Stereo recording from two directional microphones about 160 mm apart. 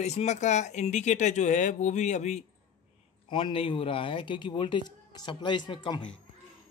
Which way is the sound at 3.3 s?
30° left (ahead or behind).